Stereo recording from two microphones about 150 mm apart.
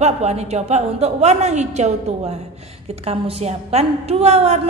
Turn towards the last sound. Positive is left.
turn(degrees=-45)  # may be behind; listen again after turning